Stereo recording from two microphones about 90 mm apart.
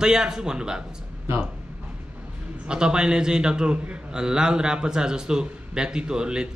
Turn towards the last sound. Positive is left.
turn(degrees=-10)  # may be behind; listen again after turning